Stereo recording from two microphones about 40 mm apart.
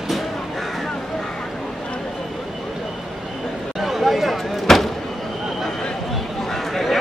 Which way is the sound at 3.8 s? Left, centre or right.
Centre.